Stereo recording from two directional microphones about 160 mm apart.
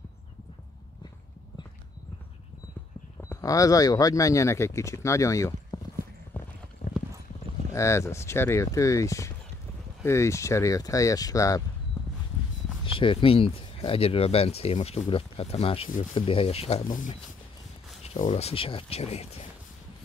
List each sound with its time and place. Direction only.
3.2 s speech: 20° left (ahead or behind)
6.3 s clip-clop: 10° left (ahead or behind)
7.7 s speech: 20° left (ahead or behind)
12.8 s speech: 35° left (ahead or behind)
18.0 s speech: 40° left (ahead or behind)